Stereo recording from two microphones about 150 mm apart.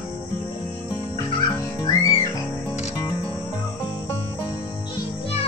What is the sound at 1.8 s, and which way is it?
Music, 25° left (ahead or behind).